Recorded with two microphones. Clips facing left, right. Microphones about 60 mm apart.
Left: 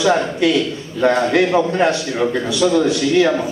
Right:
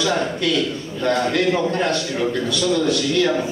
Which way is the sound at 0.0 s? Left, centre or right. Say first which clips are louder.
Left 5 dB; left.